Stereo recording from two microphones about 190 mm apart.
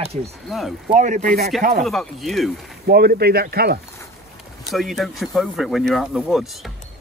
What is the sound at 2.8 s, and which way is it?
Speech, 55° right (ahead or behind).